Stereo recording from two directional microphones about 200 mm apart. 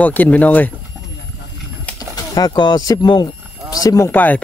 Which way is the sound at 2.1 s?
20° left (ahead or behind).